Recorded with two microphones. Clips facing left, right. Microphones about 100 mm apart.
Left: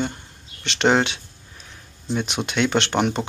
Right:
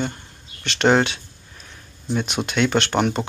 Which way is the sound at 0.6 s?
20° left (ahead or behind).